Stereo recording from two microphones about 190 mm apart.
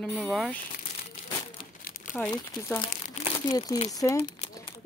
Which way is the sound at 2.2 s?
15° left (ahead or behind).